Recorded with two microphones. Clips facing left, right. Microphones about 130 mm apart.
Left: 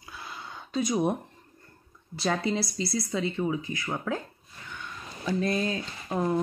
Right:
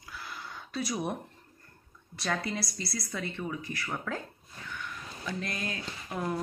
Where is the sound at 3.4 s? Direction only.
20° left (ahead or behind).